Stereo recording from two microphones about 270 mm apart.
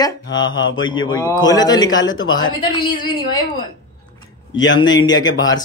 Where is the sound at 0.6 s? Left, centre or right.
Left.